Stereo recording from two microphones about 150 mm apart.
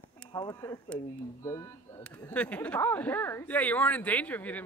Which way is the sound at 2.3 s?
10° left (ahead or behind).